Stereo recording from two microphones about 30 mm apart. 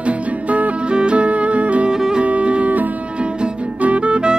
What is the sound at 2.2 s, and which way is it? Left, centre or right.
Music, right.